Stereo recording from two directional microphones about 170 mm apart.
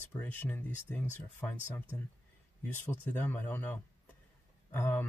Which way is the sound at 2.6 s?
10° left (ahead or behind).